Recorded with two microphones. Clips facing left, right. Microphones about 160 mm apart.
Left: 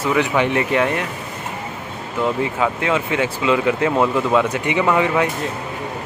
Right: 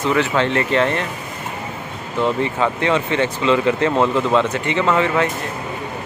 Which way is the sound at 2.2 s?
5° left (ahead or behind).